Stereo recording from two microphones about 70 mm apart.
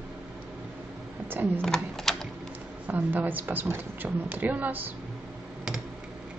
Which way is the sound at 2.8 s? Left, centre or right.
Right.